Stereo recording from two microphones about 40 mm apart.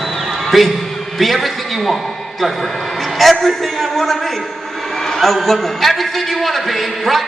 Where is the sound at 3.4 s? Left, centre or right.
Centre.